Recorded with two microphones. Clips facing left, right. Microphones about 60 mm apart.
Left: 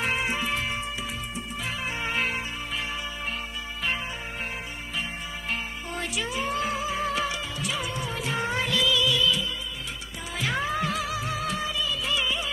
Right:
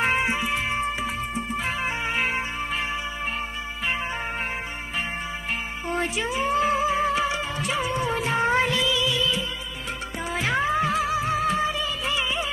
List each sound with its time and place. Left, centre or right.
0.0 s music: right
0.4 s music: centre
0.7 s music: right
2.0 s music: right
5.9 s music: right
10.3 s music of bollywood: right